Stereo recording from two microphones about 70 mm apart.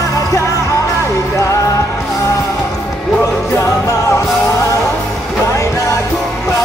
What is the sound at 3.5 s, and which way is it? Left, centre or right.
Music, left.